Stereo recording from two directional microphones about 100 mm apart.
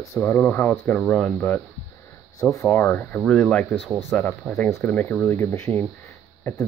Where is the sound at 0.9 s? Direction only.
5° left (ahead or behind).